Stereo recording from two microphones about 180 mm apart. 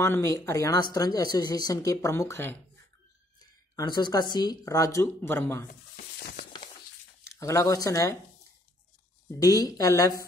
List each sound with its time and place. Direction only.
0.0 s speech: 15° left (ahead or behind)
7.3 s speech: 15° left (ahead or behind)
9.4 s speech: 20° left (ahead or behind)